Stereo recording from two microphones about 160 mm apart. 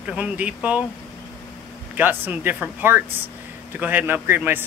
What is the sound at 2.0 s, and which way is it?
Speech, 10° right (ahead or behind).